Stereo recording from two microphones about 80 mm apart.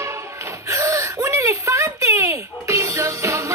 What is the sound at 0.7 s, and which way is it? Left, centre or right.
Whimper, right.